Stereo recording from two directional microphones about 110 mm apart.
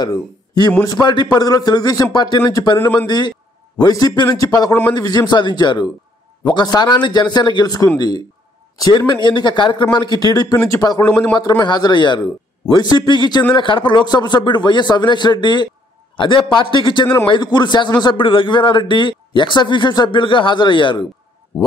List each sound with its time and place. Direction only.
0.0 s a man's voice: 40° left (ahead or behind)
2.8 s a man's voice: 15° left (ahead or behind)
3.1 s a man's voice: 40° left (ahead or behind)